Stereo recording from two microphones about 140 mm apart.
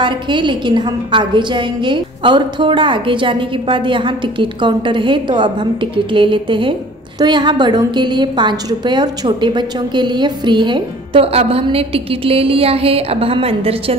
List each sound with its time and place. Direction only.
0.0 s a woman's voice: 35° right (ahead or behind)